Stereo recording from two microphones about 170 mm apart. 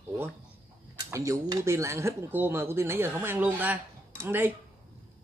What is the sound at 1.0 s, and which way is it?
Speech, 20° right (ahead or behind).